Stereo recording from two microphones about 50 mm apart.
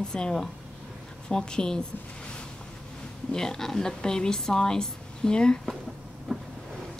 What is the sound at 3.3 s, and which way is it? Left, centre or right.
A woman's voice, centre.